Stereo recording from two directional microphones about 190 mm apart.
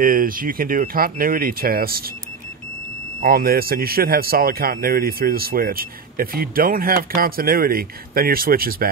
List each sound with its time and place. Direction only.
0.0 s speech: 50° right (ahead or behind)
3.2 s speech: 50° right (ahead or behind)